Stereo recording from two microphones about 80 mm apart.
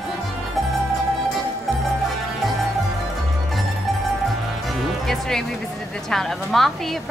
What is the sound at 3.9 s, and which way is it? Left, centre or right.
Music, centre.